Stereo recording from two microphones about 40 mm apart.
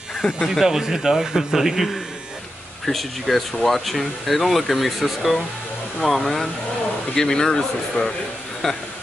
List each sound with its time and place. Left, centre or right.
0.2 s speech: centre
0.6 s speech: centre
6.2 s speech: centre
8.0 s a man's voice: left
8.6 s speech: centre